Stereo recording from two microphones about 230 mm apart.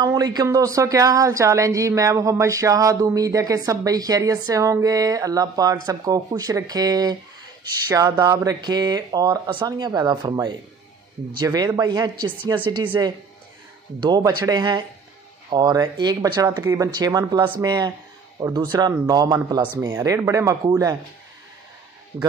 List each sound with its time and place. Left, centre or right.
0.0 s speech: centre
22.1 s speech: centre